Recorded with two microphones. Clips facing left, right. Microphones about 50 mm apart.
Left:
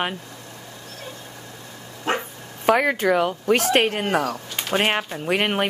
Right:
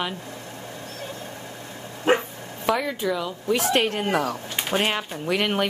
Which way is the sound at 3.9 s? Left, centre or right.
Left.